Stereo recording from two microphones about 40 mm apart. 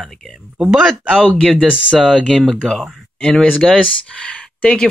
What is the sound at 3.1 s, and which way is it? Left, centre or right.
Speech, centre.